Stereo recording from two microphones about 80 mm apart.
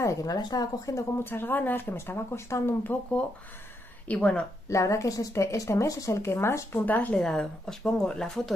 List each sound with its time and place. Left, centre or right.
0.0 s speech: left
0.4 s speech: left
1.2 s speech: left
2.9 s speech: left
4.1 s speech: centre
4.6 s a woman's voice: left
6.9 s speech: centre
7.2 s speech: centre